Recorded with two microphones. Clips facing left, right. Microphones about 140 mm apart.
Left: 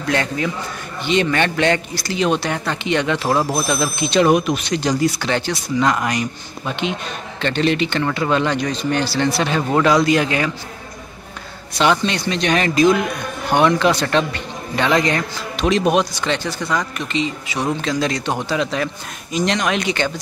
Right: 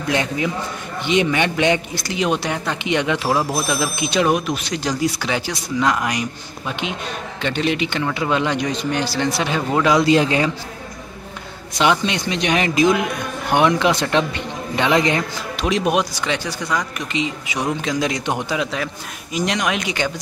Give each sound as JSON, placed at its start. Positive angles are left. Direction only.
{"t": 0.1, "sound": "speech", "side_deg": -15}
{"t": 3.4, "sound": "speech", "side_deg": 0}
{"t": 3.7, "sound": "speech", "side_deg": -10}
{"t": 7.4, "sound": "speech", "side_deg": -10}
{"t": 9.7, "sound": "speech", "side_deg": 0}
{"t": 9.9, "sound": "speech", "side_deg": -25}
{"t": 11.8, "sound": "speech", "side_deg": -15}
{"t": 15.6, "sound": "speech", "side_deg": -5}